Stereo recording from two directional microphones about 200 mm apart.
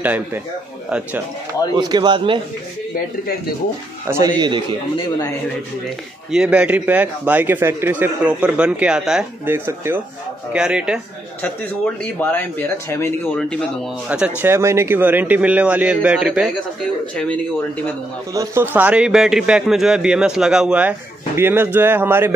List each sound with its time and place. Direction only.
0.0 s a man's voice: 10° right (ahead or behind)
1.8 s speech: 20° right (ahead or behind)
4.4 s speech: 25° right (ahead or behind)
6.3 s a man's voice: 5° right (ahead or behind)
11.4 s speech: 10° left (ahead or behind)
14.0 s a man's voice: 5° right (ahead or behind)
18.3 s a man's voice: 15° right (ahead or behind)